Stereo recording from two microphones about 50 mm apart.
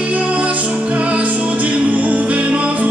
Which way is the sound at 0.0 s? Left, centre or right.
Right.